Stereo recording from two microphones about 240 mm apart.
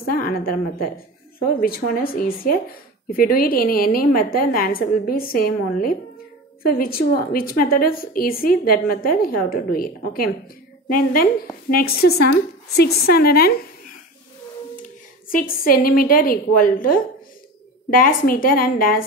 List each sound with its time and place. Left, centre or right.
0.0 s a woman's voice: left
15.3 s a woman's voice: left